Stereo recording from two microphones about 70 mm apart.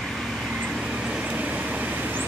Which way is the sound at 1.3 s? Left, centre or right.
Right.